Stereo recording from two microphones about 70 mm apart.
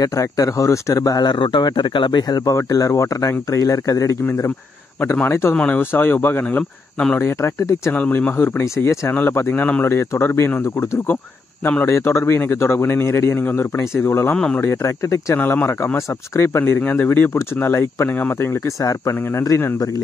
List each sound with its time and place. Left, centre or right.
0.0 s speech: left
2.4 s speech: left
5.3 s speech: left
7.9 s speech: left
8.4 s speech: left
11.8 s speech: left
14.3 s speech: centre
14.6 s speech: left
15.3 s speech: left
16.3 s speech: left
16.8 s speech: left
18.8 s speech: left